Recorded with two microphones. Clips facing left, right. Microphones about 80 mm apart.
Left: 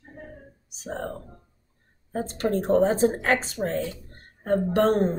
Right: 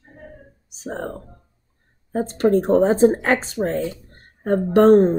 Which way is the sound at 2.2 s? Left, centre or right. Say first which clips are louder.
Right 7 dB; right.